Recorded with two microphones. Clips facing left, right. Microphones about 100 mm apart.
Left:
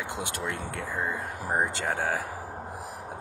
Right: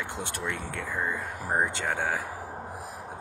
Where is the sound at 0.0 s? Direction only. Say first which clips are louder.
Left 1 dB; 15° left (ahead or behind).